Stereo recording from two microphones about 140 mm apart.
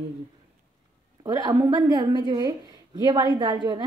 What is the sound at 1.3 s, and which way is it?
A woman's voice, 25° right (ahead or behind).